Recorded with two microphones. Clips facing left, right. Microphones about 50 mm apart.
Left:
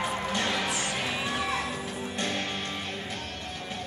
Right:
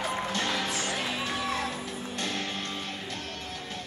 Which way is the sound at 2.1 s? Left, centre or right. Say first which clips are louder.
Left 2 dB; centre.